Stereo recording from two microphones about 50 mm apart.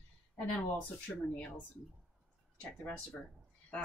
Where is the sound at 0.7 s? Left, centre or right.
Left.